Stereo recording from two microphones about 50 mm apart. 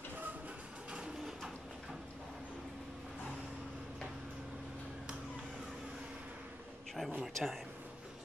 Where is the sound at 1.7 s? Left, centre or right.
Centre.